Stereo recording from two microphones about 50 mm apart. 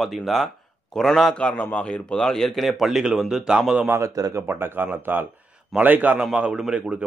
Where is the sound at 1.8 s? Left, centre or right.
Left.